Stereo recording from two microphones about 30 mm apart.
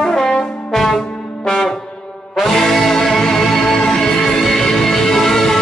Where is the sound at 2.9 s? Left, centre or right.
Centre.